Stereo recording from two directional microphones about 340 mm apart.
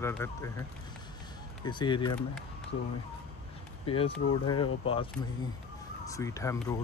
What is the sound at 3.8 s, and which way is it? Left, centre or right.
Speech, centre.